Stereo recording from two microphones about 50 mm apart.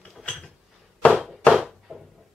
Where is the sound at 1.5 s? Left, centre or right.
Centre.